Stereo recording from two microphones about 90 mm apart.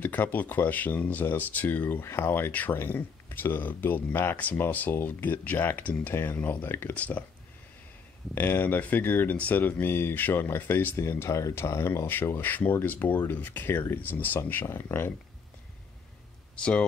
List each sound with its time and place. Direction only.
0.0 s speech: 20° left (ahead or behind)
8.4 s speech: 25° left (ahead or behind)
16.5 s speech: 10° left (ahead or behind)